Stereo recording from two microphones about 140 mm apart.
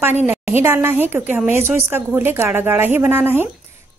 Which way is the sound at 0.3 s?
15° right (ahead or behind).